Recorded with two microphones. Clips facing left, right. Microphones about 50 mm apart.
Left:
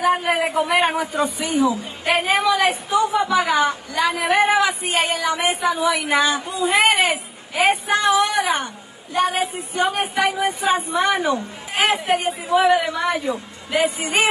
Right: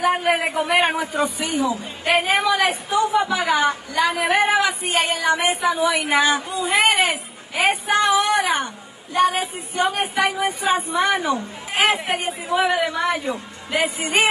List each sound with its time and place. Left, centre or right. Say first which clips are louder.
0.0 s speech: even; centre
13.8 s music: left 3 dB; right